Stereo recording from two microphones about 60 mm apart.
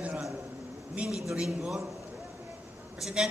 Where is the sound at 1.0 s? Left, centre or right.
Right.